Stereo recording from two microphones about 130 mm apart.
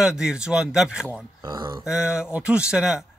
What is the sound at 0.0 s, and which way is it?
Speech, 5° right (ahead or behind).